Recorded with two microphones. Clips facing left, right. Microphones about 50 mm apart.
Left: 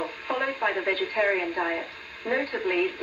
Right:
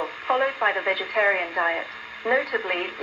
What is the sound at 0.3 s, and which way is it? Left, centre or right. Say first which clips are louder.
Speech: right 5 dB; right.